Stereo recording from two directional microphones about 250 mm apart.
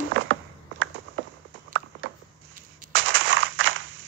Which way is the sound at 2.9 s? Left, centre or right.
Right.